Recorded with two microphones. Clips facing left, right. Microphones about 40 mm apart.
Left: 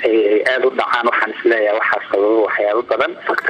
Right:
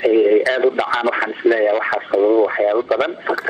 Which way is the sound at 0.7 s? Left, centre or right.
Centre.